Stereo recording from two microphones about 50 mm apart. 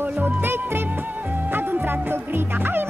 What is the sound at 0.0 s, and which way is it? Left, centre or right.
Music, right.